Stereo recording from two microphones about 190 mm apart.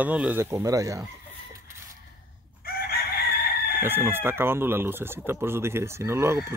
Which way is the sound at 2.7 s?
50° left (ahead or behind).